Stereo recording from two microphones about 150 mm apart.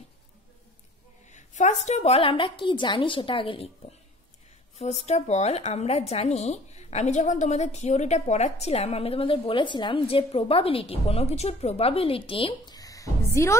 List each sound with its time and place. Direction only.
1.3 s a woman's voice: 50° left (ahead or behind)
4.7 s speech: 45° left (ahead or behind); by 13.6 s 20° left (ahead or behind)